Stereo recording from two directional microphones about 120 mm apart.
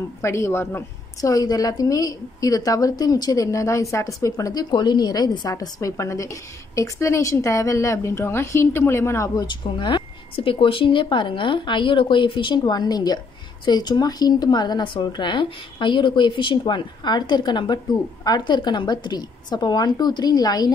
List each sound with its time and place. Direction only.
0.2 s a woman's voice: 20° left (ahead or behind)
9.5 s a woman's voice: 40° left (ahead or behind)